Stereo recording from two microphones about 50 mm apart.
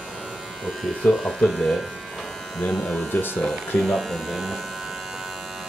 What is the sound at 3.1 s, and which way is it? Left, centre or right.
Speech, left.